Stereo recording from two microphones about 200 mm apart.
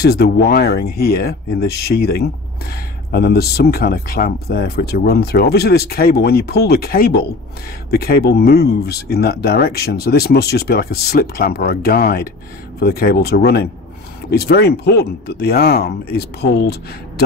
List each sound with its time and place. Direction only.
0.0 s speech: 55° left (ahead or behind)